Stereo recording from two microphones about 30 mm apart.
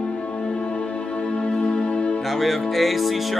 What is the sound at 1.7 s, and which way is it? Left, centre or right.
Music, left.